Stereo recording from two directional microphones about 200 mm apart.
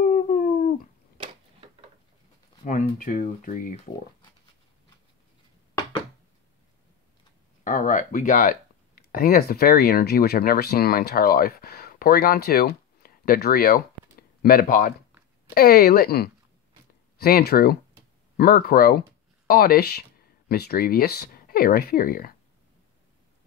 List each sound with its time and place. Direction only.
0.0 s dog: 40° left (ahead or behind)
2.6 s speech: 40° left (ahead or behind)
7.6 s speech: 40° left (ahead or behind)